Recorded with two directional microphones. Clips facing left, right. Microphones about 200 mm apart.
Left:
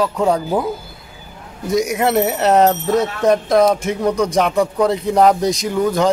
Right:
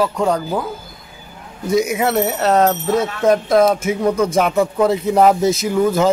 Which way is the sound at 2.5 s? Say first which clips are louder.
Left 2 dB; 15° left (ahead or behind).